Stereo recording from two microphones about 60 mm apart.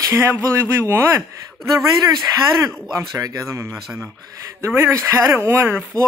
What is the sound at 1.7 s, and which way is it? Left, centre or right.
Speech, right.